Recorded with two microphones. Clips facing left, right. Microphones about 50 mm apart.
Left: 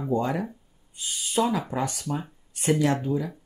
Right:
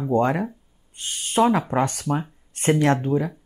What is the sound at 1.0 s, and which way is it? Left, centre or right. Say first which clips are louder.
Owl: right 5 dB; right.